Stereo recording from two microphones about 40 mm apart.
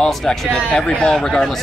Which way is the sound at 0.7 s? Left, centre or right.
Left.